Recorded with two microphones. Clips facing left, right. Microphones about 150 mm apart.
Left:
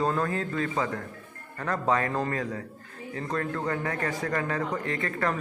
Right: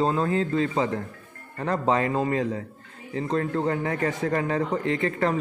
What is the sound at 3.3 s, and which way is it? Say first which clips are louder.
Speech: right 5 dB; 25° right (ahead or behind).